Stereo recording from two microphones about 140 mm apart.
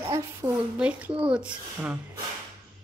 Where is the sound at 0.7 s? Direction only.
10° right (ahead or behind).